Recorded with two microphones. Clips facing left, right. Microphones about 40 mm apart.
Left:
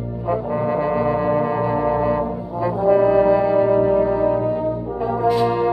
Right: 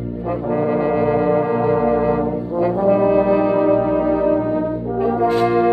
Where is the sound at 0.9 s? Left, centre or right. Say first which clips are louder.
Right 2 dB; right.